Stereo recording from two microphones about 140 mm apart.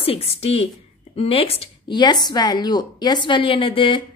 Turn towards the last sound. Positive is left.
turn(degrees=40)  # may be behind; listen again after turning